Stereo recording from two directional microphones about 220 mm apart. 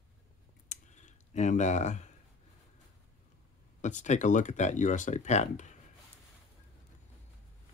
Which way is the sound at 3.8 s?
35° left (ahead or behind).